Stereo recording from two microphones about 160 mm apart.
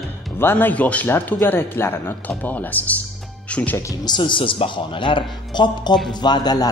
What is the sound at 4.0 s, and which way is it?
Speech, 30° left (ahead or behind).